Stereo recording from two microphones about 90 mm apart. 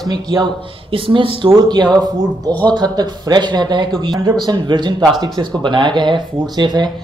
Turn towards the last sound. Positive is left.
turn(degrees=-55)  # may be behind; listen again after turning